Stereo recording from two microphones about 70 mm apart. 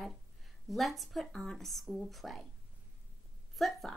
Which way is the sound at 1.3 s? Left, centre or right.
Centre.